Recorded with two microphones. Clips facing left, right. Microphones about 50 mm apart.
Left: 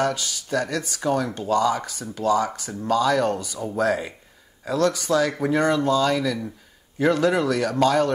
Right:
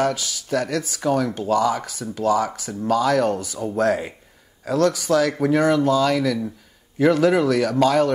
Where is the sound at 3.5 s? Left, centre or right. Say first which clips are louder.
Right 2 dB; right.